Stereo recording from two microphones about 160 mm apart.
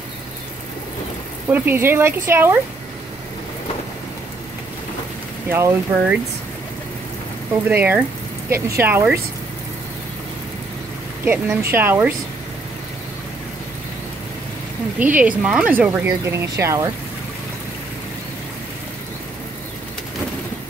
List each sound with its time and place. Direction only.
1.5 s speech: 15° right (ahead or behind)
5.5 s speech: 15° right (ahead or behind)
7.7 s speech: 15° right (ahead or behind)
11.2 s speech: 15° right (ahead or behind)
15.0 s speech: 10° right (ahead or behind)